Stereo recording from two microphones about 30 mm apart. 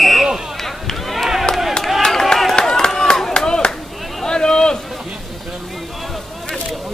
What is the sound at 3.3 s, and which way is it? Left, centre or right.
Clapping, left.